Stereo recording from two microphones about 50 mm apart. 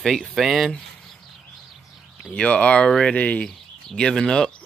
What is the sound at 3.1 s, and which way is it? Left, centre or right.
Speech, left.